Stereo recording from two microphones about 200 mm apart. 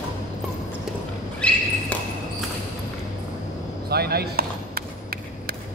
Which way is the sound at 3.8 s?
50° right (ahead or behind).